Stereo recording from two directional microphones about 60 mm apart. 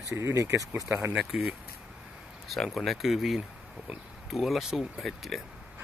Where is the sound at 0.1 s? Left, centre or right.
Right.